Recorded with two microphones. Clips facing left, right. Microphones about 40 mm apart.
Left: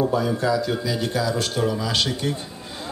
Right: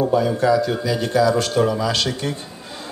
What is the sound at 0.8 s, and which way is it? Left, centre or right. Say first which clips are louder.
Speech: right 6 dB; right.